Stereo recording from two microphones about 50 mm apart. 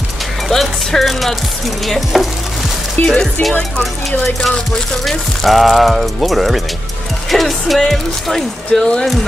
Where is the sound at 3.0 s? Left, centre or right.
Centre.